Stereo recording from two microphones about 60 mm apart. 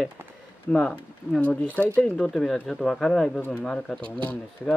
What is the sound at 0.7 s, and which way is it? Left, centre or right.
Speech, centre.